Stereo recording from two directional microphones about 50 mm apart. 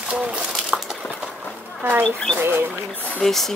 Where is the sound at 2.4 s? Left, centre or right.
Right.